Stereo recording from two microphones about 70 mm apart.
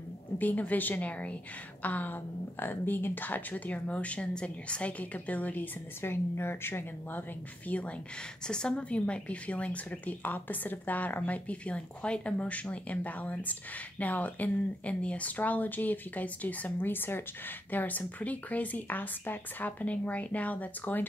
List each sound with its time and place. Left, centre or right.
0.4 s a woman's voice: left